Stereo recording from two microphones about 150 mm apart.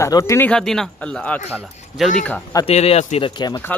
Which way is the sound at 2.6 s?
45° left (ahead or behind).